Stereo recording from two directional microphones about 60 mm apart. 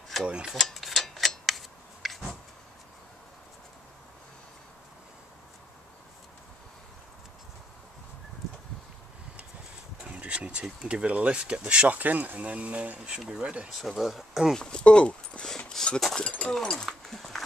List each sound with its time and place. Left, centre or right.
0.1 s a sound: centre
0.5 s mechanisms: centre
2.0 s a sound: centre
10.0 s speech: right
13.7 s speech: centre
14.5 s speech: centre